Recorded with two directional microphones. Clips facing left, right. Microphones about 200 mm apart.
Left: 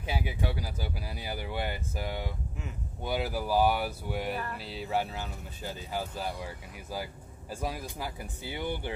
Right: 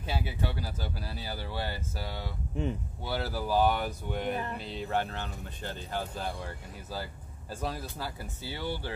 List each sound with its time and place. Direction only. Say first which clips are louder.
0.0 s speech: left 1 dB; 10° left (ahead or behind)